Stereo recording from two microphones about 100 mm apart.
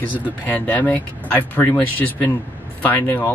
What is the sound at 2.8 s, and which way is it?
Speech, 20° left (ahead or behind).